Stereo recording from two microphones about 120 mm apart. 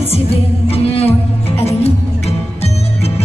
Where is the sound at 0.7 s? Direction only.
55° left (ahead or behind).